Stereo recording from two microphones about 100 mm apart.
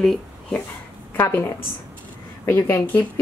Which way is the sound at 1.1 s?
25° left (ahead or behind).